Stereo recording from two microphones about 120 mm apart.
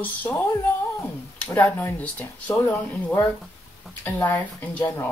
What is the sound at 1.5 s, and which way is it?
Speech, 15° left (ahead or behind).